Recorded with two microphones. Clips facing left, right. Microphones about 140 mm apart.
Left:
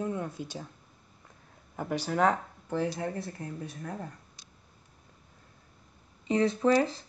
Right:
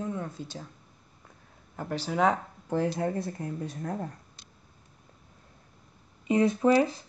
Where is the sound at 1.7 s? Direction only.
10° left (ahead or behind).